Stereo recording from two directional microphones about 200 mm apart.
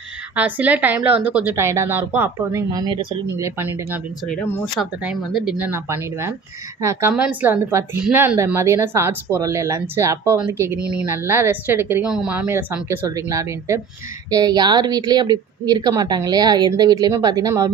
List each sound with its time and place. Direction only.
0.4 s speech: 10° right (ahead or behind); by 3.4 s 25° right (ahead or behind)
3.4 s speech: 10° right (ahead or behind)
4.3 s speech: 10° left (ahead or behind)
5.0 s a woman's voice: centre (ahead or behind); by 17.6 s 20° right (ahead or behind)